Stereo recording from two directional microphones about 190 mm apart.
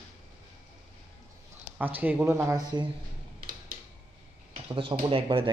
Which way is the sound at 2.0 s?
10° right (ahead or behind).